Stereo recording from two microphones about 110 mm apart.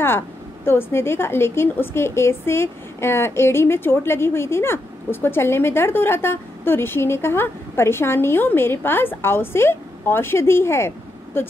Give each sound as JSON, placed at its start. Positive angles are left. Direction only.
{"t": 0.7, "sound": "a woman's voice", "side_deg": 20}